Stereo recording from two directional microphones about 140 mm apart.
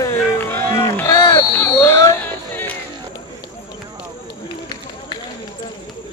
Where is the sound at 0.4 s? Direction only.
15° left (ahead or behind).